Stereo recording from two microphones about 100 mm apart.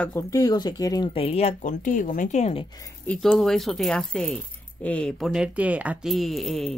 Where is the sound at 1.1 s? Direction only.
90° left.